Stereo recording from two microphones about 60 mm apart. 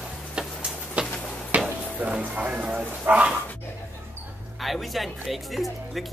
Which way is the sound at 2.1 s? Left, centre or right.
Centre.